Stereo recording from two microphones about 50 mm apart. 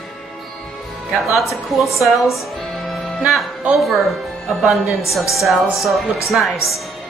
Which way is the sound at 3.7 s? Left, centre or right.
Centre.